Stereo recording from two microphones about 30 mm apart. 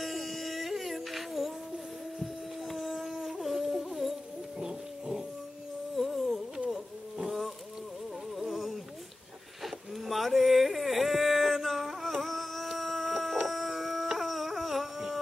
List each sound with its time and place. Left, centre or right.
0.0 s music: centre
2.8 s dog: centre
3.3 s music: centre
4.6 s a sound: right
5.9 s music: centre
7.2 s a sound: centre
13.4 s dog: centre